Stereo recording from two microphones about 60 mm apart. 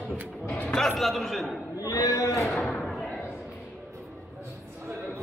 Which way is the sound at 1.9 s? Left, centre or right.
Left.